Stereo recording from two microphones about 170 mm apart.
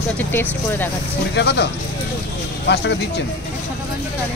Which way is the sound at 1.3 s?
90° left.